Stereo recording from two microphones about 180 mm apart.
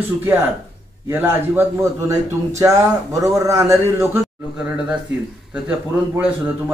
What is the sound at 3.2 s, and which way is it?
Speech, 20° right (ahead or behind).